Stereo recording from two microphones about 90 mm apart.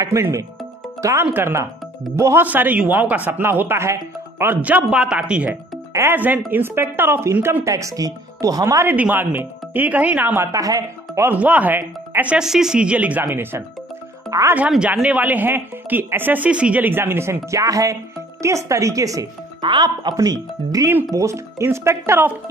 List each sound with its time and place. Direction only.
0.0 s speech: 35° right (ahead or behind)
1.2 s speech: 25° right (ahead or behind)
2.4 s speech: 20° right (ahead or behind)
5.5 s speech: 25° right (ahead or behind)
7.6 s speech: 40° right (ahead or behind)
8.8 s speech: 20° right (ahead or behind)
10.3 s speech: 35° right (ahead or behind)
11.2 s speech: 15° right (ahead or behind)
12.4 s speech: 5° right (ahead or behind); by 13.7 s 25° right (ahead or behind)
14.3 s speech: 40° right (ahead or behind)
15.0 s speech: 15° right (ahead or behind); by 19.2 s 40° right (ahead or behind)
19.6 s speech: 55° right (ahead or behind)
20.2 s speech: 40° right (ahead or behind)